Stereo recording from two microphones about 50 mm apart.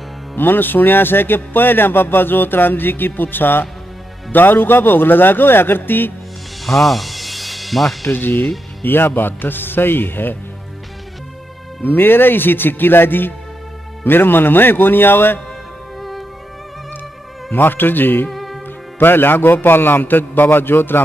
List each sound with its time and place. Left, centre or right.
0.4 s speech: left
6.6 s music: centre
8.1 s speech: left
11.8 s speech: left
16.0 s music: centre
17.5 s speech: left
18.3 s music: centre
18.9 s speech: left